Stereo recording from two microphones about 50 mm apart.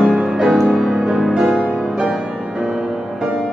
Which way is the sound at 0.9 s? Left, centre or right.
Centre.